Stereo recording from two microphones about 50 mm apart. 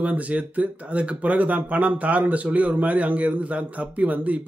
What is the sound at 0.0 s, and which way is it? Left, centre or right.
Speech, right.